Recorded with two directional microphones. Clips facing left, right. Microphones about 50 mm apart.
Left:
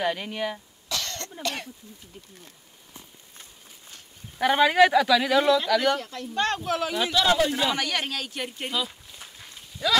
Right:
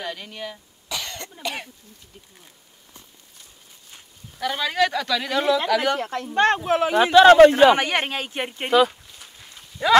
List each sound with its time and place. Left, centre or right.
0.0 s speech: centre
0.8 s cough: centre
1.4 s speech: centre
4.4 s speech: left; by 5.9 s centre
5.9 s speech: right
7.2 s speech: right
7.7 s speech: right
9.8 s speech: right